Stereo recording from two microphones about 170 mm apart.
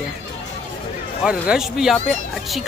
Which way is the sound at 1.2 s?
5° right (ahead or behind).